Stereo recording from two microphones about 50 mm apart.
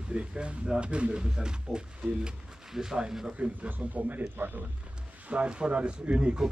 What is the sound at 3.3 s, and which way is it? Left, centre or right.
A man's voice, right.